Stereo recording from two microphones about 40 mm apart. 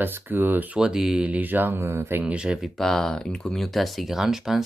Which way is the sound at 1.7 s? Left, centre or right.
Right.